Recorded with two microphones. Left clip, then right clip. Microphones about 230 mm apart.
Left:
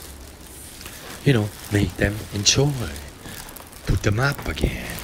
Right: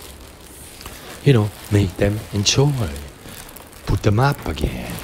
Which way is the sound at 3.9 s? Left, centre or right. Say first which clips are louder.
Right 4 dB; right.